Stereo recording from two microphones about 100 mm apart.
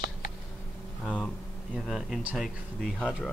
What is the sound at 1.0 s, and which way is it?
Speech, 10° left (ahead or behind).